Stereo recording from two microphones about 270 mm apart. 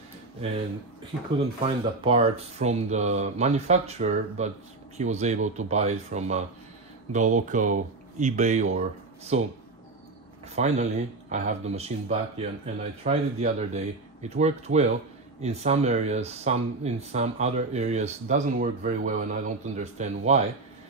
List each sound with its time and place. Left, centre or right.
2.0 s speech: right
10.5 s speech: right